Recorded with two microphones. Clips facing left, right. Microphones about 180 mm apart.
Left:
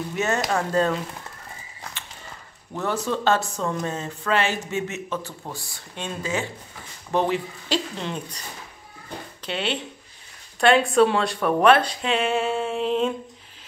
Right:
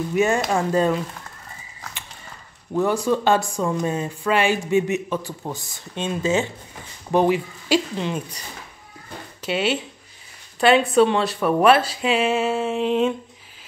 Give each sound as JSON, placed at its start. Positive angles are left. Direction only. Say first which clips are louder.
{"t": 0.1, "sound": "a man's voice", "louder": "right 4 dB", "side_deg": -10}
{"t": 2.7, "sound": "a man's voice", "louder": "right 6 dB", "side_deg": -10}
{"t": 7.1, "sound": "a man's voice", "louder": "right 4 dB", "side_deg": -10}
{"t": 9.5, "sound": "a man's voice", "louder": "right 5 dB", "side_deg": -5}